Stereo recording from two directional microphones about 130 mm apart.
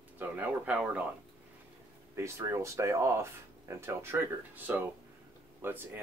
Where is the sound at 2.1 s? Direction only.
20° right (ahead or behind).